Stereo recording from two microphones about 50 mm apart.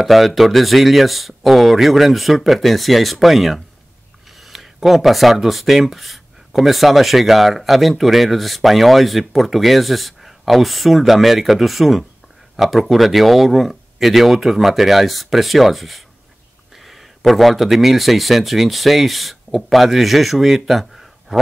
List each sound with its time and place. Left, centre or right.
0.0 s speech: centre